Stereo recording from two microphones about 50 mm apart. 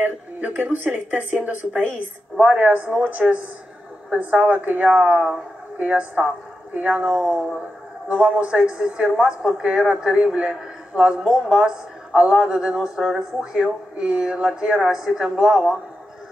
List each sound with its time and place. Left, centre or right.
0.0 s a woman's voice: right
5.0 s a woman's voice: centre
5.8 s a woman's voice: right; by 15.8 s centre